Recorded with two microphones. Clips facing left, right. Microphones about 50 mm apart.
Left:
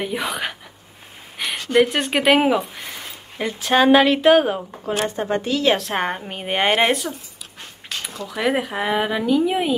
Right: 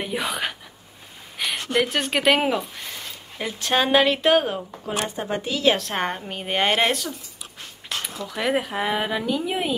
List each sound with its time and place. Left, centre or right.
0.0 s speech: centre
1.4 s a sound: centre
1.9 s speech: centre
2.8 s a sound: centre
3.3 s speech: centre; by 7.2 s left
8.4 s speech: centre